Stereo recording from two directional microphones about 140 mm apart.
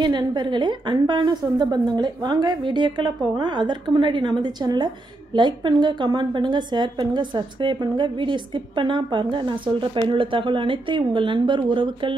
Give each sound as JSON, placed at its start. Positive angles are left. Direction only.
{"t": 0.0, "sound": "a woman's voice", "side_deg": -30}